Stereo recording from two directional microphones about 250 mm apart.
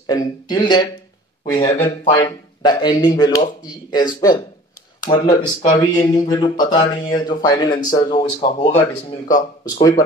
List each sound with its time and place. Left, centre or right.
0.0 s speech: centre